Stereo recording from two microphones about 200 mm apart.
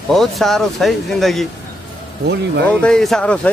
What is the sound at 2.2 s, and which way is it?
Speech, 60° right (ahead or behind).